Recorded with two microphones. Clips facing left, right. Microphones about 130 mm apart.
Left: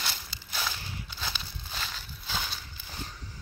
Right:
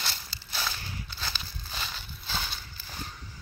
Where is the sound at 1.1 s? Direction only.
10° left (ahead or behind).